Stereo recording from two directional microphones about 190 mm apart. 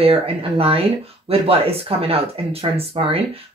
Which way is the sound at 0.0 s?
30° right (ahead or behind).